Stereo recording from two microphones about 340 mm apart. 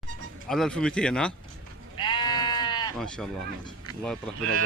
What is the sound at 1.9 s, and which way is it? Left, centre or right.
Sheep, centre.